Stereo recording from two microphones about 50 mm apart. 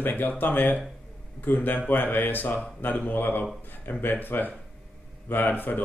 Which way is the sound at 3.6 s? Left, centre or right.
Left.